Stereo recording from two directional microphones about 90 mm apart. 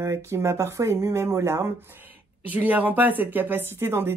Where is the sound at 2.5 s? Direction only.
15° right (ahead or behind).